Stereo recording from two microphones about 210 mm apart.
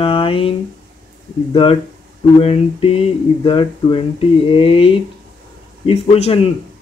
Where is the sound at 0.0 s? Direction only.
25° left (ahead or behind).